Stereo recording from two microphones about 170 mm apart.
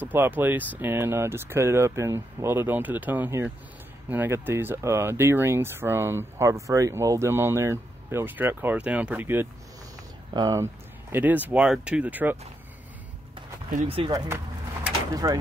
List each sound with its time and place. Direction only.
0.0 s speech: 10° right (ahead or behind)
13.8 s speech: 35° right (ahead or behind)
15.2 s speech: 20° right (ahead or behind)